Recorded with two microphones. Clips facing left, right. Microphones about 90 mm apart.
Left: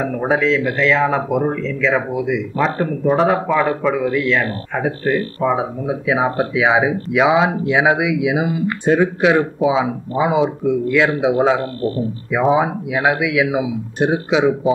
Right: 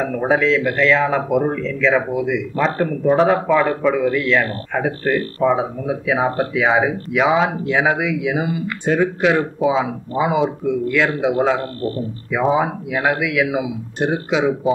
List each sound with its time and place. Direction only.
0.0 s speech: centre (ahead or behind)